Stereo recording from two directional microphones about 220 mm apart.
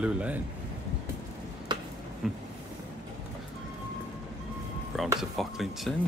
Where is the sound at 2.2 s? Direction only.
Centre (ahead or behind).